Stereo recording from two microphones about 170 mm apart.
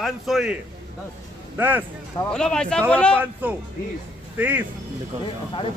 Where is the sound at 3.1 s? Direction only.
10° right (ahead or behind).